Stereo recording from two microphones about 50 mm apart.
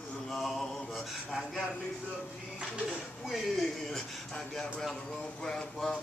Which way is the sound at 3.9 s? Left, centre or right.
Centre.